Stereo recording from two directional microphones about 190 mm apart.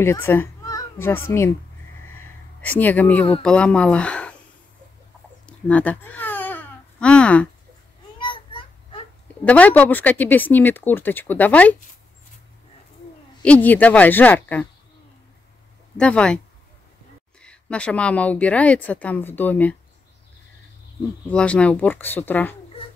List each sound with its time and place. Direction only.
0.0 s speech: 10° left (ahead or behind)
2.1 s a sound: 10° left (ahead or behind)
3.4 s speech: 5° left (ahead or behind)
5.5 s babbling: 5° left (ahead or behind)
8.2 s a sound: 25° left (ahead or behind)
9.4 s a woman's voice: 10° left (ahead or behind)
13.4 s a woman's voice: 10° left (ahead or behind)
16.0 s speech: 5° left (ahead or behind)
17.4 s a woman's voice: 5° left (ahead or behind)
21.3 s a woman's voice: 5° left (ahead or behind)